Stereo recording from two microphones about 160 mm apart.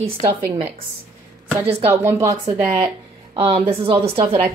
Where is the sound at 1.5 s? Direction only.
15° right (ahead or behind).